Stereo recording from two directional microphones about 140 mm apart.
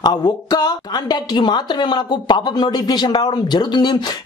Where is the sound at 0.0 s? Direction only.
30° left (ahead or behind).